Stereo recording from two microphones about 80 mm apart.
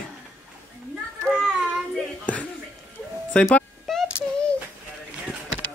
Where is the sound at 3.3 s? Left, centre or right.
Centre.